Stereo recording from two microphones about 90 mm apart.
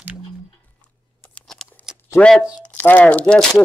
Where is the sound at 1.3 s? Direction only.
5° left (ahead or behind).